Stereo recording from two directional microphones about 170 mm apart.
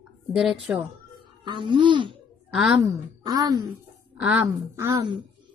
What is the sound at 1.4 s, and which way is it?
A woman's voice, 30° right (ahead or behind).